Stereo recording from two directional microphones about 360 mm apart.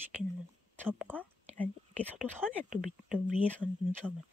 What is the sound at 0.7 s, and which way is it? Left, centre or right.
Speech, centre.